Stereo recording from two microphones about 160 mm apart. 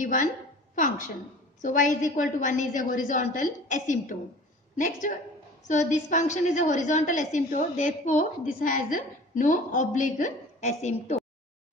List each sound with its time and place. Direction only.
0.0 s a woman's voice: 55° left (ahead or behind)